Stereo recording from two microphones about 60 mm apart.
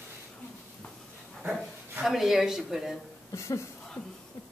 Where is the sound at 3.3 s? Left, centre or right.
Left.